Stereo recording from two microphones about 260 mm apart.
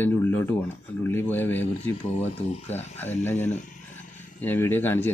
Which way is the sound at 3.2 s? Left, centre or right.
Centre.